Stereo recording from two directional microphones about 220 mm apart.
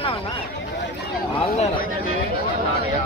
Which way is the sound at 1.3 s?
25° left (ahead or behind).